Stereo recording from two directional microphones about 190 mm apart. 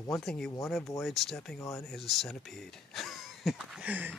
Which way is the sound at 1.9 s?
Centre (ahead or behind).